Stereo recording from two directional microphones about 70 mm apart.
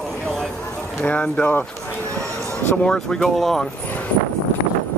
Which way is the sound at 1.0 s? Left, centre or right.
Centre.